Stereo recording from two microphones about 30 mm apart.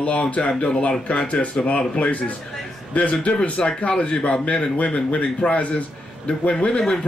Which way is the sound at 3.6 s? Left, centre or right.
Left.